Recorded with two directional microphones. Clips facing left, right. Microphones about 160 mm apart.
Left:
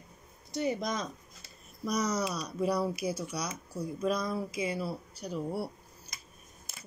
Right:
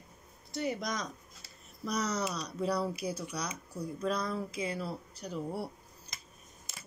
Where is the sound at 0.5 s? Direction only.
20° left (ahead or behind).